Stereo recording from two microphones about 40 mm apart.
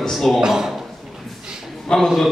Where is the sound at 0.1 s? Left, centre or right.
Centre.